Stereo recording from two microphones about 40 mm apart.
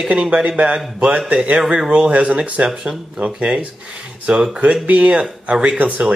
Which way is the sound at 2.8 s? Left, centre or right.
Centre.